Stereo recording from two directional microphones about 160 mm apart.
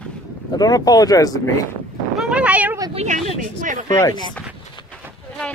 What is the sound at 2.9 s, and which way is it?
Speech, 50° right (ahead or behind).